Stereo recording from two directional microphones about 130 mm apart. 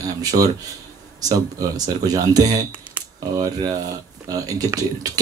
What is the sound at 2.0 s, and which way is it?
Speech, 30° right (ahead or behind).